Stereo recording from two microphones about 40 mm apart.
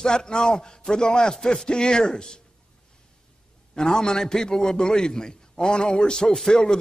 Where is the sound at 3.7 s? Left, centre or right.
Centre.